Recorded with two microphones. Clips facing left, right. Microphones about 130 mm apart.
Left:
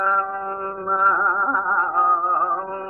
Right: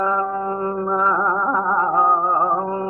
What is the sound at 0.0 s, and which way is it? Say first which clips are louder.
Music: right 3 dB; 25° right (ahead or behind).